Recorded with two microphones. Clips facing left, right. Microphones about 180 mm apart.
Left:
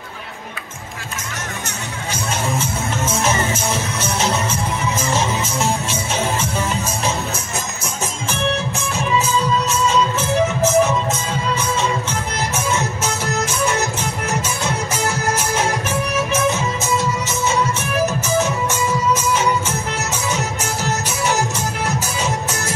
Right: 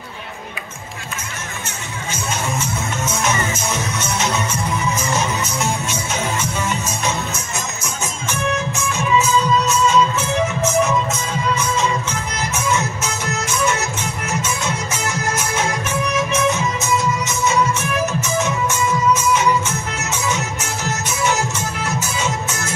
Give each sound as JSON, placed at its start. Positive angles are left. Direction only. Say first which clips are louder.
{"t": 3.1, "sound": "music", "louder": "left 2 dB", "side_deg": 30}
{"t": 7.8, "sound": "music", "louder": "left 1 dB", "side_deg": 30}